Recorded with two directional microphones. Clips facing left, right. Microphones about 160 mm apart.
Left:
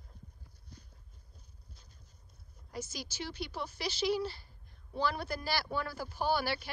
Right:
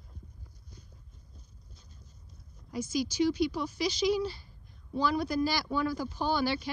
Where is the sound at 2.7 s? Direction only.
10° right (ahead or behind).